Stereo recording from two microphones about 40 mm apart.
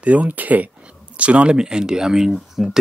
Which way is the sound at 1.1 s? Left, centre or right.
Right.